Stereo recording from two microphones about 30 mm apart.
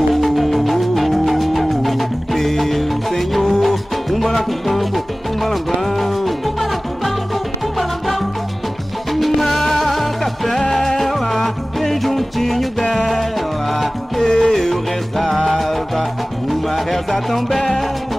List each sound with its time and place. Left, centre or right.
0.1 s music: centre
9.1 s music: centre
14.2 s music: left
14.5 s music: centre